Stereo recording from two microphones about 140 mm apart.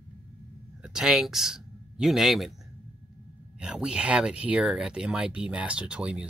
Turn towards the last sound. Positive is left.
turn(degrees=-5)  # may be behind; listen again after turning